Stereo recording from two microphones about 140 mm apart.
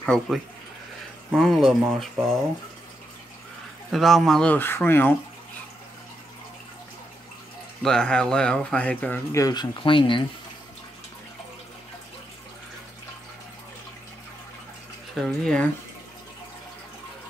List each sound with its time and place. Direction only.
0.0 s speech: centre (ahead or behind)
3.9 s speech: centre (ahead or behind)
7.8 s speech: 5° left (ahead or behind)
9.3 s speech: 25° left (ahead or behind)
15.1 s speech: 5° left (ahead or behind)